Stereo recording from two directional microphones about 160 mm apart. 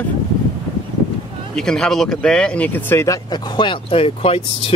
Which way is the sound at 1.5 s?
5° left (ahead or behind).